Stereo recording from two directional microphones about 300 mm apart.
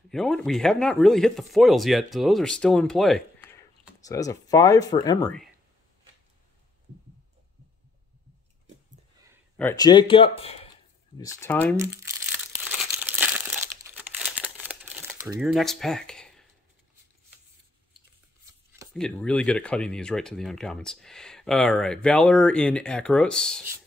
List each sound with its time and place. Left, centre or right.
0.1 s speech: centre
9.6 s speech: centre
12.6 s crumpling: centre
18.9 s speech: centre